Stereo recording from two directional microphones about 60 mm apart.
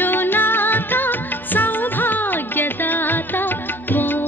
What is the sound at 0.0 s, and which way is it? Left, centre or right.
Music, left.